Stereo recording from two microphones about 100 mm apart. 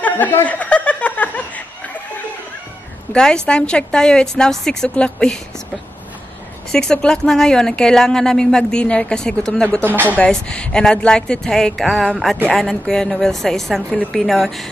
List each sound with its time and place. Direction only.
0.0 s snicker: 15° left (ahead or behind)
3.1 s a woman's voice: 10° left (ahead or behind)
6.7 s a woman's voice: 5° left (ahead or behind)
9.8 s speech: 20° right (ahead or behind)
10.0 s a woman's voice: 10° left (ahead or behind)